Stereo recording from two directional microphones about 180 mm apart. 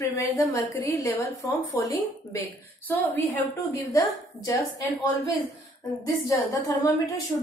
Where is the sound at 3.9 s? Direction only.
20° left (ahead or behind).